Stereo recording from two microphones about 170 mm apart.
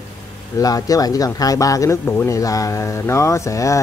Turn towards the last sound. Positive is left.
turn(degrees=20)  # may be behind; listen again after turning